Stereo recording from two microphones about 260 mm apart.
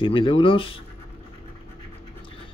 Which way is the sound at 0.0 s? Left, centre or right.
Centre.